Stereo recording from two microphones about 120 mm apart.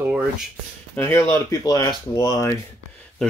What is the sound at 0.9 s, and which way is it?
Speech, 25° left (ahead or behind).